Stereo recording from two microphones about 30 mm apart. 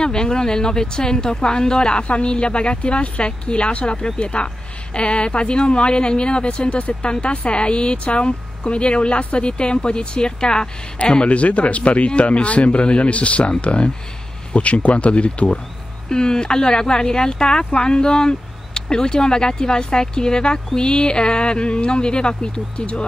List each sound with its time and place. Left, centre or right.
0.0 s speech: left
9.5 s speech: left
11.2 s speech: left
16.1 s speech: left